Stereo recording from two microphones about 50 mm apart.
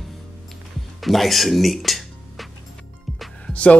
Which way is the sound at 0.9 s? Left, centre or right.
Centre.